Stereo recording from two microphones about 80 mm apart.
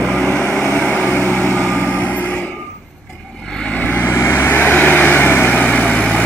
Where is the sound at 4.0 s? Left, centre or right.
Left; by 6.2 s centre.